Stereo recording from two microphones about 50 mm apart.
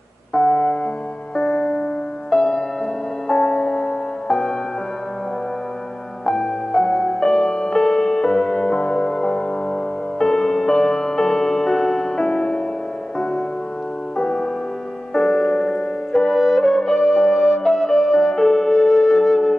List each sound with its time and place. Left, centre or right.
0.3 s keyboard: centre
1.3 s music: centre
6.2 s music: centre
14.1 s music: centre